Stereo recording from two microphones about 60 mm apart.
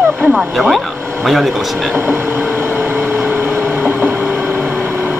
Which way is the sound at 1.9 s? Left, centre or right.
Right.